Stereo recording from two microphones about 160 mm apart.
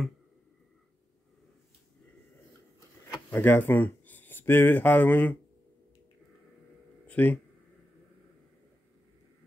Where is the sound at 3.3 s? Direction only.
10° left (ahead or behind).